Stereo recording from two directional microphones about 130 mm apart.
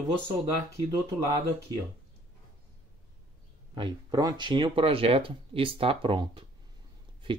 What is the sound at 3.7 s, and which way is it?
Speech, 35° right (ahead or behind).